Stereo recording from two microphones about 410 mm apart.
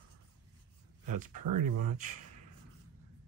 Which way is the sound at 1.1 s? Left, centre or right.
Centre.